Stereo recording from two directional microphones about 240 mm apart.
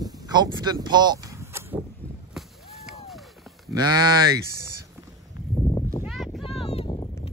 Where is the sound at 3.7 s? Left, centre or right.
Centre.